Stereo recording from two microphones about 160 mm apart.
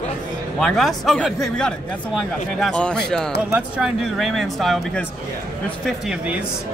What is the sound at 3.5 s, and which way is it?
Speech, 10° right (ahead or behind).